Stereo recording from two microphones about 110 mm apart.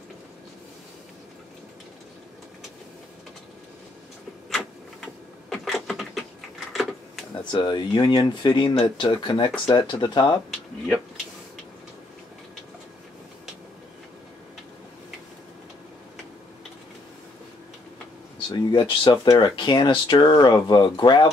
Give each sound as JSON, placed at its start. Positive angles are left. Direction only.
{"t": 4.5, "sound": "a sound", "side_deg": 0}
{"t": 7.3, "sound": "speech", "side_deg": 45}
{"t": 18.7, "sound": "speech", "side_deg": 45}